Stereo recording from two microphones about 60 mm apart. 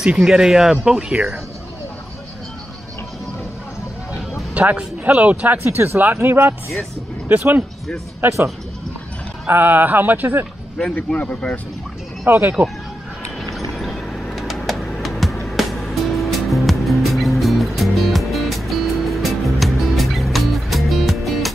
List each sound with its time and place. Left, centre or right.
0.0 s speech: centre
4.6 s a man's voice: right
5.6 s speech: right
9.5 s speech: right
11.1 s speech: left
12.3 s speech: right
13.4 s a sound: centre
14.3 s music: centre